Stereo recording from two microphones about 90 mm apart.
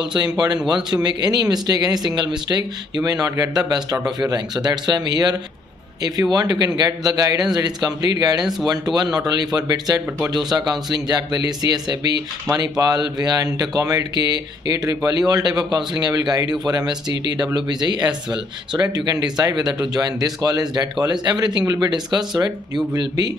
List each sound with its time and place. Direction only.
0.1 s speech: 50° right (ahead or behind)
3.0 s speech: 40° right (ahead or behind)
21.6 s speech: 40° right (ahead or behind)